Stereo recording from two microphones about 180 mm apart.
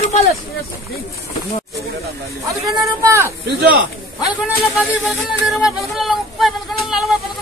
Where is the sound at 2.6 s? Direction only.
15° right (ahead or behind).